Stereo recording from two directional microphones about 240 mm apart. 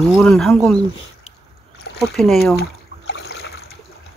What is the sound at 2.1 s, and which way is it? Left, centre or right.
Speech, centre.